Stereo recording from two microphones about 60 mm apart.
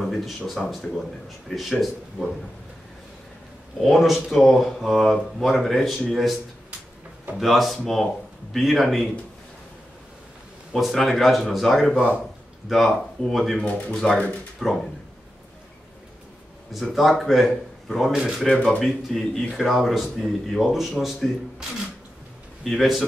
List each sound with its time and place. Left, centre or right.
0.0 s speech: centre
3.8 s speech: centre
7.3 s speech: centre
10.7 s speech: centre
13.7 s speech: left
13.9 s speech: centre
16.9 s a man's voice: centre